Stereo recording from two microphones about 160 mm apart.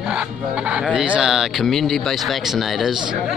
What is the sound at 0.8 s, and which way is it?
Speech, 5° right (ahead or behind).